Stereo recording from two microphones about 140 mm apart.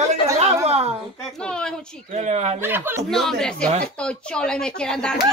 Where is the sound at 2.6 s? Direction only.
15° right (ahead or behind).